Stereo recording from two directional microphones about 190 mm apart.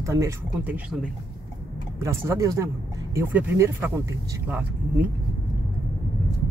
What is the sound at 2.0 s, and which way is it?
Speech, 15° right (ahead or behind).